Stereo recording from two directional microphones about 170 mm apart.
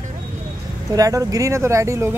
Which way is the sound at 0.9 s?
20° right (ahead or behind).